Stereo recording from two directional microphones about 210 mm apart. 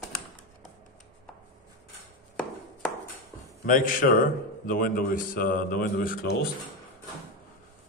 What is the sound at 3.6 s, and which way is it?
A man's voice, 40° left (ahead or behind).